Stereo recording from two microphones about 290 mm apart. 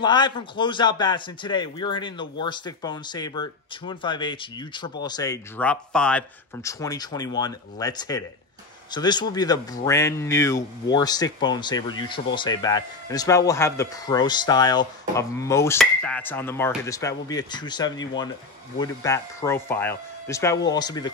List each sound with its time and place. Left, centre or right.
0.0 s a man's voice: centre